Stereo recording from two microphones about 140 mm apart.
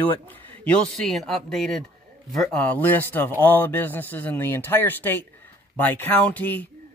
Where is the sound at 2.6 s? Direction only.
10° left (ahead or behind).